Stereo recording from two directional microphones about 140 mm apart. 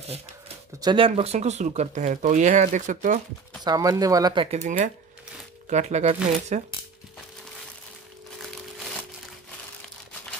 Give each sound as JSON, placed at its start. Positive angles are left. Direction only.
{"t": 0.7, "sound": "speech", "side_deg": -35}
{"t": 3.6, "sound": "speech", "side_deg": -25}
{"t": 4.5, "sound": "speech", "side_deg": -60}